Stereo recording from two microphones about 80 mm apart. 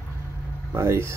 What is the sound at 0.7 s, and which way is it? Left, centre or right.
Speech, right.